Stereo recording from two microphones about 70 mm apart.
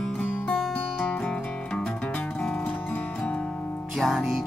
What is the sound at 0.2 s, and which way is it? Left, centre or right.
Music, centre.